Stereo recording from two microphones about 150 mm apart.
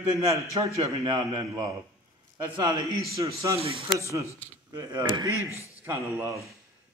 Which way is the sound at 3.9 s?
20° right (ahead or behind).